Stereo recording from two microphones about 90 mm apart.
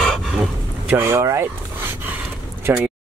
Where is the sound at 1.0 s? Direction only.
30° right (ahead or behind).